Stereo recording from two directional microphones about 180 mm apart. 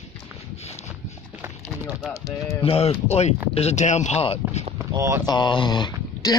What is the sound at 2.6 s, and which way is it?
Speech, 35° left (ahead or behind).